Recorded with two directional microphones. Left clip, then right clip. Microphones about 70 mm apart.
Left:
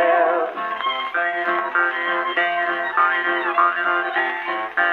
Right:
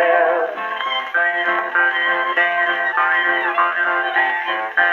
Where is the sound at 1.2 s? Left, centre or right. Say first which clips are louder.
Right 5 dB; left.